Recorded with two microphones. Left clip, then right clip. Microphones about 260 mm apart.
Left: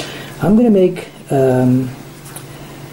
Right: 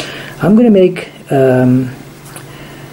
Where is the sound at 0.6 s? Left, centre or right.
Right.